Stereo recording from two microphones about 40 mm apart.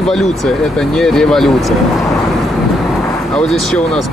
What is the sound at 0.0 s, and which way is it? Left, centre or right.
Speech, centre.